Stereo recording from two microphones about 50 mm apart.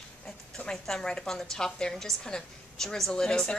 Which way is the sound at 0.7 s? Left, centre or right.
Centre.